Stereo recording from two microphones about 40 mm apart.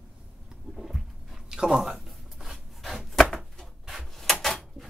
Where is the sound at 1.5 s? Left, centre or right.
Centre.